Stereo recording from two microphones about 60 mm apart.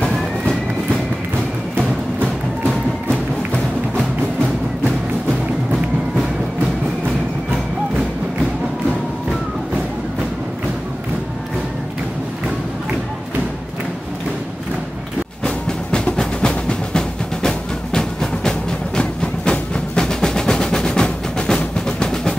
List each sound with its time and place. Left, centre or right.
15.4 s music: centre